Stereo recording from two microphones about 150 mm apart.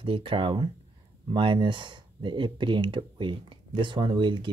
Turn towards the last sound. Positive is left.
turn(degrees=-35)  # may be behind; listen again after turning